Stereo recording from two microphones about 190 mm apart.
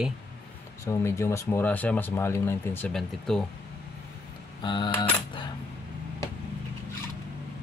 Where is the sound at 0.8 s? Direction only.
15° left (ahead or behind).